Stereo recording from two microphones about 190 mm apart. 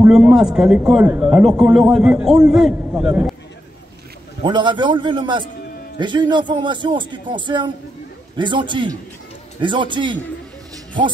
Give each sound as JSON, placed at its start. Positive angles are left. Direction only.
{"t": 0.0, "sound": "a man's voice", "side_deg": -5}
{"t": 4.4, "sound": "speech", "side_deg": -25}